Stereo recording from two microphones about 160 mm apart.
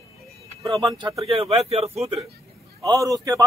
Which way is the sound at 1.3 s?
35° right (ahead or behind).